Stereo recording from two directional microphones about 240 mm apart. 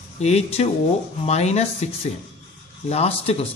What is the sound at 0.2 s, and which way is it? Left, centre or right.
Speech, left.